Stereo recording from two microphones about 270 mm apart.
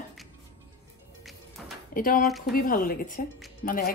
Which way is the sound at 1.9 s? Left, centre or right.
Left.